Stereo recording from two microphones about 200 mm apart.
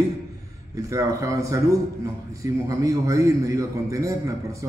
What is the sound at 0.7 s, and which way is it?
A man's voice, 15° right (ahead or behind).